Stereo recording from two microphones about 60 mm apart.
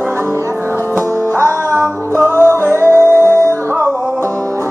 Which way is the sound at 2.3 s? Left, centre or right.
Right.